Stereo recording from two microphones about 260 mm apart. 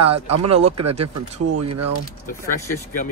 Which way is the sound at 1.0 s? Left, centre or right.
Right.